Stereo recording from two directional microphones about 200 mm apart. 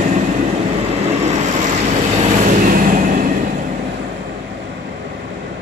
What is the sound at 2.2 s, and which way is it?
Vehicle, 40° right (ahead or behind).